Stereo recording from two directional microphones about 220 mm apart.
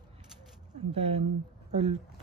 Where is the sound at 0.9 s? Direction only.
25° right (ahead or behind).